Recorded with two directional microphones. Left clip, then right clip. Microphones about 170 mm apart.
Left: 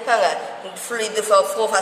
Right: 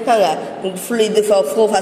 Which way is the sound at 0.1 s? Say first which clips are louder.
Right 4 dB; 20° right (ahead or behind).